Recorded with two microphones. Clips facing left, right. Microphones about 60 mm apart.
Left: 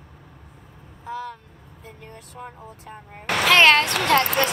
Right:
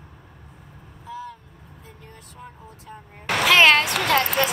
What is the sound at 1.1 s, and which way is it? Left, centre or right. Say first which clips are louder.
Vehicle: left 4 dB; left.